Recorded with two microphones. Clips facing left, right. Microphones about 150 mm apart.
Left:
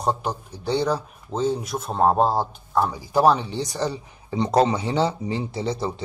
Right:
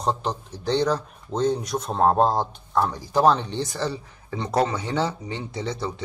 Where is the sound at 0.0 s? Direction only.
10° left (ahead or behind).